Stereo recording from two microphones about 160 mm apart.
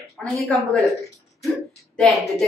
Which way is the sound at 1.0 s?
Centre (ahead or behind).